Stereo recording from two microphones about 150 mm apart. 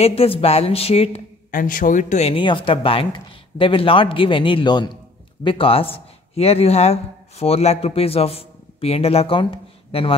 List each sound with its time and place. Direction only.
0.0 s speech: 40° left (ahead or behind)
1.5 s speech: 65° left (ahead or behind)
2.3 s speech: 35° left (ahead or behind)